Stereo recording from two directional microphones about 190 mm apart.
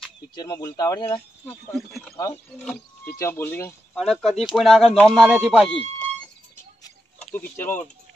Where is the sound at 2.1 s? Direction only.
15° left (ahead or behind).